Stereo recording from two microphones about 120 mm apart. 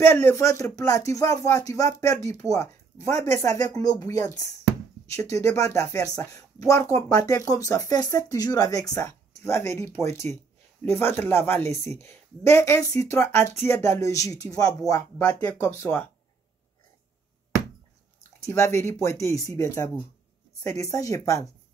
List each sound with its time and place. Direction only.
0.0 s speech: 20° left (ahead or behind)
18.4 s speech: 25° left (ahead or behind)